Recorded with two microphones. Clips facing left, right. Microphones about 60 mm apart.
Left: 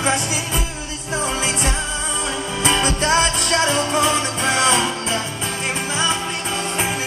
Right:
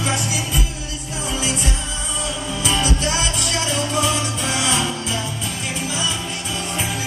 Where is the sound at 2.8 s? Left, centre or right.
Left.